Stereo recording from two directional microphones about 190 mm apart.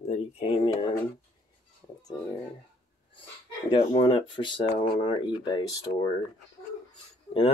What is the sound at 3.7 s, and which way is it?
Speech, 25° left (ahead or behind).